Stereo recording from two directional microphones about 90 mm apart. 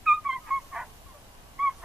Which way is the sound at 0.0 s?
5° right (ahead or behind).